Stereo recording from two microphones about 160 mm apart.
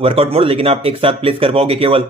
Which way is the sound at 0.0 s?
40° right (ahead or behind).